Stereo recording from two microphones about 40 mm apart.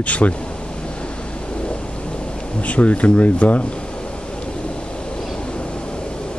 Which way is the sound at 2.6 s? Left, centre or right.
Left.